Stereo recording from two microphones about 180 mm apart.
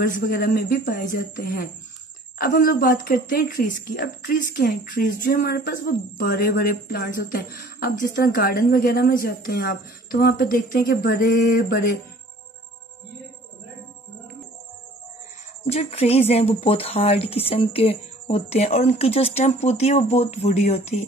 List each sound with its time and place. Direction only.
0.3 s a woman's voice: 55° left (ahead or behind)
15.7 s speech: 35° left (ahead or behind)